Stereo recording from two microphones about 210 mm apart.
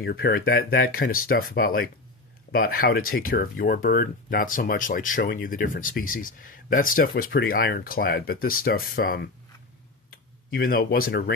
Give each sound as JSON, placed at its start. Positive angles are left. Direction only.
{"t": 0.0, "sound": "speech", "side_deg": 45}
{"t": 10.5, "sound": "speech", "side_deg": 45}